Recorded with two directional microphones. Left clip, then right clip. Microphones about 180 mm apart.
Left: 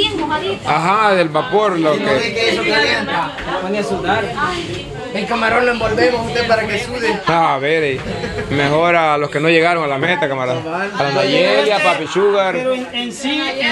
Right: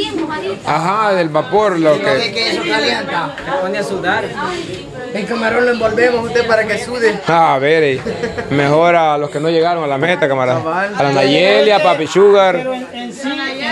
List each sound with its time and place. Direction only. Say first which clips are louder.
0.7 s speech: even; 10° right (ahead or behind)
1.5 s a man's voice: right 2 dB; 20° right (ahead or behind)
6.3 s a man's voice: right 2 dB; 50° right (ahead or behind)
7.2 s a man's voice: right 3 dB; 25° right (ahead or behind)
8.9 s speech: right 2 dB; 10° right (ahead or behind)
9.2 s a man's voice: left 1 dB; centre (ahead or behind)
9.8 s a man's voice: right 2 dB; 20° right (ahead or behind)